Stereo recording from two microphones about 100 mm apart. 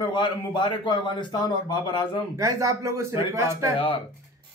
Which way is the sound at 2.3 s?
30° right (ahead or behind).